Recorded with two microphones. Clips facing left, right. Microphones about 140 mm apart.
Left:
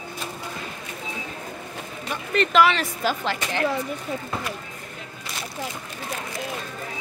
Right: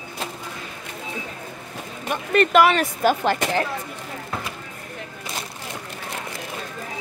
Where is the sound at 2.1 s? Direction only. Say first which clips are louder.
Right 4 dB; 55° right (ahead or behind).